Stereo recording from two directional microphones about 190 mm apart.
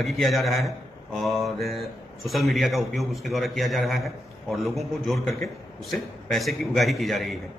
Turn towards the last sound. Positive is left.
turn(degrees=0)  # may be behind; listen again after turning